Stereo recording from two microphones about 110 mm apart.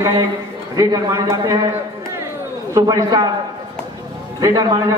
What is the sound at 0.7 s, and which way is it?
Speech, 35° right (ahead or behind).